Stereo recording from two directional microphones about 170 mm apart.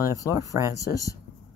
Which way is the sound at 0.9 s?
20° left (ahead or behind).